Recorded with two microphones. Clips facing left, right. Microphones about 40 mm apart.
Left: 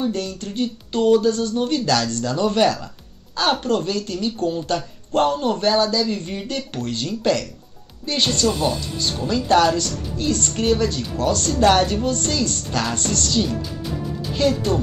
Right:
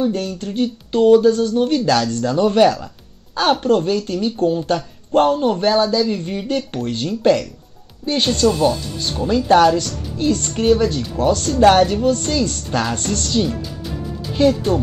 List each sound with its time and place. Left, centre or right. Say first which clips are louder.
0.1 s a woman's voice: right 3 dB; right
0.5 s a woman's voice: right 4 dB; centre
5.6 s a woman's voice: right 3 dB; right
6.0 s a woman's voice: right 4 dB; centre